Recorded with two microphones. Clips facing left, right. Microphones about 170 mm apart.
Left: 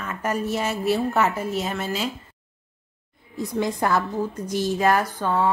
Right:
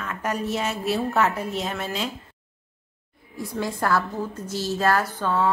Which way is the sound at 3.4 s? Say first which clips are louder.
Left 3 dB; 20° left (ahead or behind).